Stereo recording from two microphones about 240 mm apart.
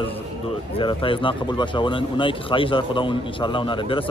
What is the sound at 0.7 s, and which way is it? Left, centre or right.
Speech, left.